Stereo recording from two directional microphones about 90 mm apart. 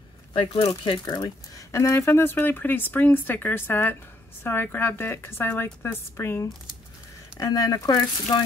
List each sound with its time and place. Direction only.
0.3 s speech: 65° left (ahead or behind)
1.0 s speech: 40° left (ahead or behind)
7.3 s speech: 40° left (ahead or behind)